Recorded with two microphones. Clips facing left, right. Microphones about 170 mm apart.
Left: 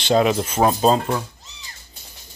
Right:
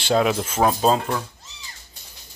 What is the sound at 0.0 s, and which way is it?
Speech, centre (ahead or behind).